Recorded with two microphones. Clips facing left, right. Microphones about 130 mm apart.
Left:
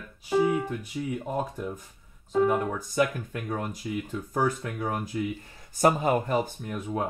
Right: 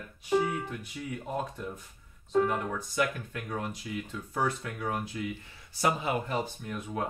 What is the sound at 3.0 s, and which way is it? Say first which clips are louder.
Speech: left 5 dB; 40° left (ahead or behind).